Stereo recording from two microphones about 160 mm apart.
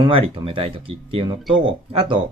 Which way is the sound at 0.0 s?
35° right (ahead or behind).